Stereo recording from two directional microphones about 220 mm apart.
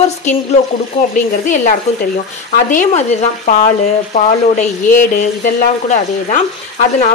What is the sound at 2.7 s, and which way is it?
Speech, 35° left (ahead or behind).